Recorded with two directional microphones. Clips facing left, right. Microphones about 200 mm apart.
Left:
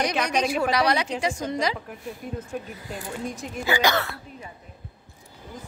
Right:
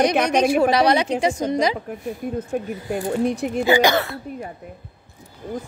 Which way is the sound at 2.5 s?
65° right (ahead or behind).